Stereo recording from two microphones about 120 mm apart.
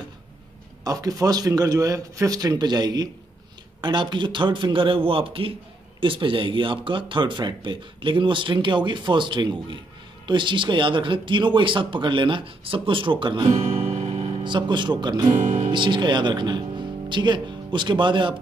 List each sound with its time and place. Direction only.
0.8 s speech: 30° right (ahead or behind)
13.8 s music: 70° right (ahead or behind)
14.4 s speech: 40° right (ahead or behind)
15.4 s speech: 80° right
15.7 s speech: 40° right (ahead or behind)